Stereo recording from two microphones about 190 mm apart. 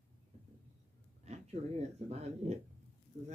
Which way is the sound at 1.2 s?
35° right (ahead or behind).